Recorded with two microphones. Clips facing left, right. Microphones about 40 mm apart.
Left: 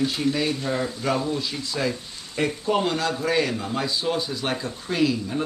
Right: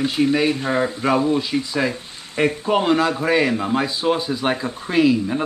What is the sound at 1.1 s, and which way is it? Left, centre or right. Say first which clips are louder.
Speech: right 10 dB; right.